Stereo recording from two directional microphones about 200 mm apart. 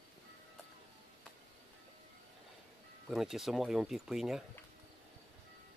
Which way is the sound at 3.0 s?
Centre (ahead or behind).